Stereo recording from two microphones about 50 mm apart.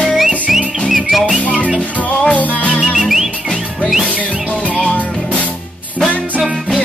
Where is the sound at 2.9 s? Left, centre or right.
Centre.